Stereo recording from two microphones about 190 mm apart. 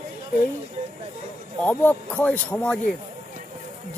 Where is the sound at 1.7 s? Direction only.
10° left (ahead or behind).